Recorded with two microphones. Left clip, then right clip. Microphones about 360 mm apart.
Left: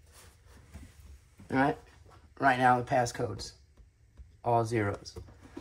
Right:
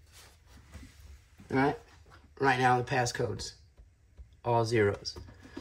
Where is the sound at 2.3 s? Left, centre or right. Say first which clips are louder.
Left 1 dB; centre.